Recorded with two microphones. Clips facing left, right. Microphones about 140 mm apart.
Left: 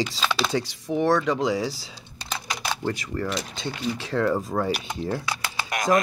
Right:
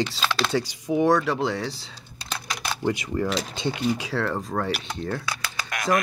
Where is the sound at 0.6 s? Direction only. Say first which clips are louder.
Right 4 dB; 15° right (ahead or behind); by 2.4 s 5° left (ahead or behind).